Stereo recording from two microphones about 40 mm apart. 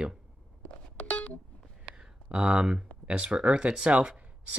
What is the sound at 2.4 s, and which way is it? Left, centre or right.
Speech, right.